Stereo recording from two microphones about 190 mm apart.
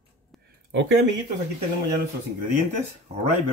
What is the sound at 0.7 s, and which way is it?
Speech, 70° right (ahead or behind).